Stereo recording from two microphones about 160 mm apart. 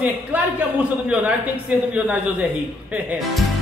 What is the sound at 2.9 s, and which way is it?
Speech, 5° right (ahead or behind).